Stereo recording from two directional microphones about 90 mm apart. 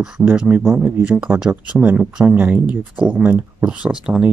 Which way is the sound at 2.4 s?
20° right (ahead or behind).